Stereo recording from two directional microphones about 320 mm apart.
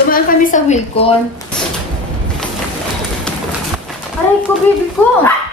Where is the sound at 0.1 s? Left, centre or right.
Left.